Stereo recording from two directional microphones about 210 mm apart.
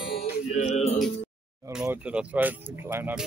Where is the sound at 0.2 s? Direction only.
30° left (ahead or behind).